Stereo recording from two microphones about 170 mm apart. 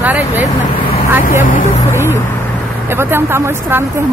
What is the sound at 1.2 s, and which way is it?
Speech, 50° left (ahead or behind).